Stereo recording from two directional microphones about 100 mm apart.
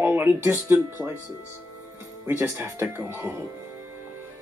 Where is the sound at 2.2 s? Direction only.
25° right (ahead or behind).